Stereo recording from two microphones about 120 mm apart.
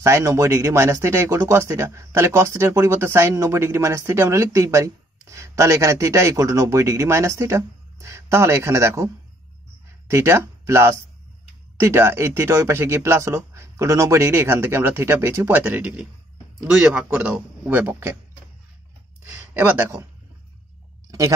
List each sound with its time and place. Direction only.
0.0 s speech: 25° right (ahead or behind)
19.5 s speech: 15° right (ahead or behind)